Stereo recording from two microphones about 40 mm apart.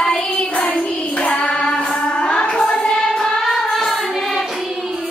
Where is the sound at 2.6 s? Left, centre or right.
Centre.